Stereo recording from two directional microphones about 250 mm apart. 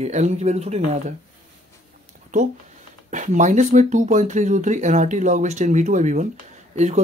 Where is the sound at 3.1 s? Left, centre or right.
Right.